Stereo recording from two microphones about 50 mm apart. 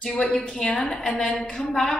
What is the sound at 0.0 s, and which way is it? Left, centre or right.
A woman's voice, centre.